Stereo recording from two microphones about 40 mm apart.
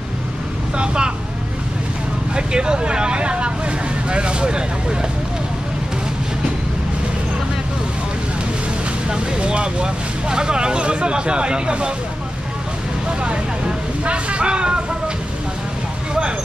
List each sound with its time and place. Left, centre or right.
0.7 s speech: right
2.3 s speech: right
9.1 s speech: right
13.2 s vehicle: right